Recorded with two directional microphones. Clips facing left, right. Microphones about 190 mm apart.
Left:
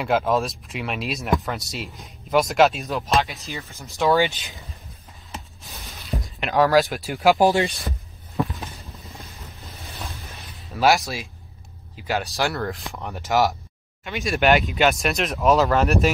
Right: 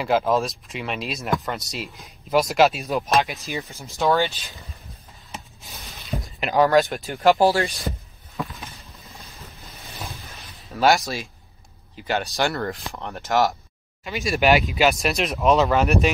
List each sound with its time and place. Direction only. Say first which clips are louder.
0.0 s speech: even; centre (ahead or behind)
2.9 s speech: right 1 dB; 15° right (ahead or behind)
3.8 s speech: left 1 dB; centre (ahead or behind)
4.2 s speech: left 2 dB; 15° left (ahead or behind)
5.3 s a sound: left 1 dB; centre (ahead or behind)
7.1 s speech: even; 5° left (ahead or behind)
7.3 s speech: left 1 dB; 20° left (ahead or behind)
9.0 s vehicle: left 2 dB; centre (ahead or behind)
10.1 s a sound: left 2 dB; centre (ahead or behind)
12.1 s speech: right 1 dB; centre (ahead or behind)